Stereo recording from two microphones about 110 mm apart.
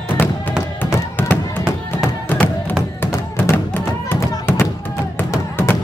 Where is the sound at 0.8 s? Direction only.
20° left (ahead or behind).